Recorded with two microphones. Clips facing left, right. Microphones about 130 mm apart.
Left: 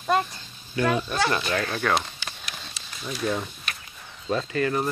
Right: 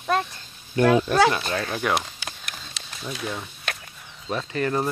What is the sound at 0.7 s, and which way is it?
Speech, 75° right (ahead or behind).